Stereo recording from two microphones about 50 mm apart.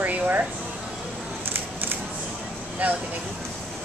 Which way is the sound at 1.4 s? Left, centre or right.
Right.